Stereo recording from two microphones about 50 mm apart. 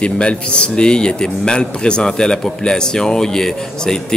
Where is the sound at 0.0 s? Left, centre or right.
Left.